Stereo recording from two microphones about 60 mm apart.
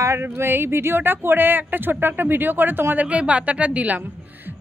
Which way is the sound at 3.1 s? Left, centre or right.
Right.